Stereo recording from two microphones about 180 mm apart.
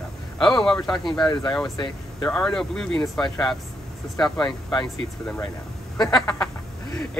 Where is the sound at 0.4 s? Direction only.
Centre (ahead or behind).